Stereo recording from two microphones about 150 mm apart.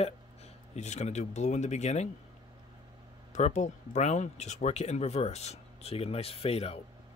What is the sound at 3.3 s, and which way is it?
Speech, 50° left (ahead or behind).